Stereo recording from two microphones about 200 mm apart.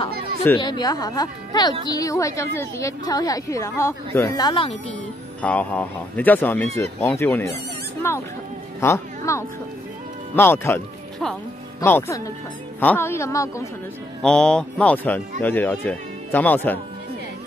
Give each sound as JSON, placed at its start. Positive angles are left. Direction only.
{"t": 0.4, "sound": "a woman's voice", "side_deg": 20}
{"t": 5.4, "sound": "a woman's voice", "side_deg": 5}
{"t": 14.2, "sound": "a woman's voice", "side_deg": 5}